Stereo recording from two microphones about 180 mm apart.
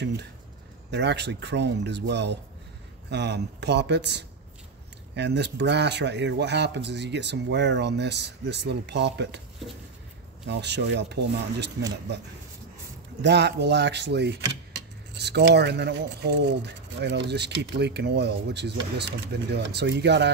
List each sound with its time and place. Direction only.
0.9 s speech: 70° right (ahead or behind)
10.4 s speech: 70° right (ahead or behind)
13.2 s speech: 70° right (ahead or behind)